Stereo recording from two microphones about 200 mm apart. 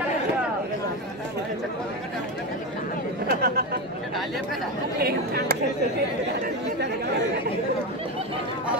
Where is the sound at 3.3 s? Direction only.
50° right (ahead or behind).